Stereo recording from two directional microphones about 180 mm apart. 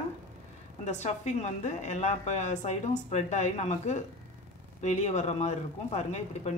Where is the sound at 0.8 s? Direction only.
40° left (ahead or behind).